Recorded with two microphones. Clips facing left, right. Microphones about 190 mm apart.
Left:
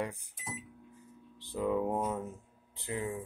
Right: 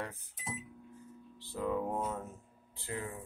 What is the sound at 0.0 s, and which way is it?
Speech, 15° left (ahead or behind).